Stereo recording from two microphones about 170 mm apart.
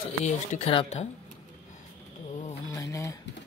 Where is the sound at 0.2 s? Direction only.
40° left (ahead or behind).